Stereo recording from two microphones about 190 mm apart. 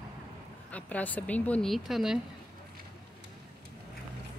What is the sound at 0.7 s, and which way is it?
A woman's voice, 10° left (ahead or behind).